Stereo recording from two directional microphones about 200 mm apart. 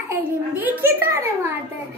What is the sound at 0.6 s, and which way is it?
Speech, 10° right (ahead or behind).